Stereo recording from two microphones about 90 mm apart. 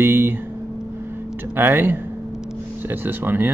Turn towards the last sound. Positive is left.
turn(degrees=-20)  # may be behind; listen again after turning